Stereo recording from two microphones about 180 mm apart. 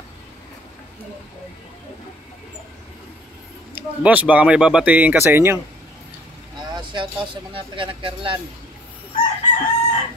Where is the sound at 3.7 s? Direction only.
10° right (ahead or behind).